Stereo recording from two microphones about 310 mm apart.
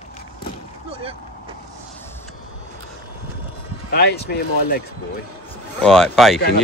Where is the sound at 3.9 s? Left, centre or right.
Left.